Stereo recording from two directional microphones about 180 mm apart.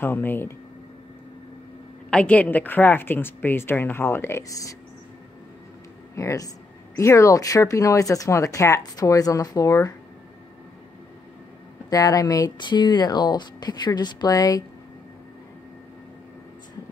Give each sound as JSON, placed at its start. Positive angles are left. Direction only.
{"t": 0.0, "sound": "speech", "side_deg": 10}
{"t": 2.0, "sound": "speech", "side_deg": 5}
{"t": 6.1, "sound": "speech", "side_deg": 20}
{"t": 11.9, "sound": "speech", "side_deg": 20}